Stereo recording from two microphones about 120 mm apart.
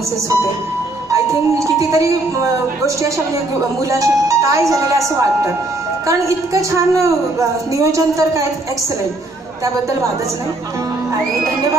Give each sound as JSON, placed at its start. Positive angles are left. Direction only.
{"t": 1.1, "sound": "a woman's voice", "side_deg": -25}
{"t": 3.9, "sound": "a woman's voice", "side_deg": -25}